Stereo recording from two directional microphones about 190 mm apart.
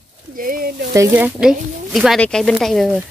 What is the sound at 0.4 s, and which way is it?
Speech, 50° right (ahead or behind).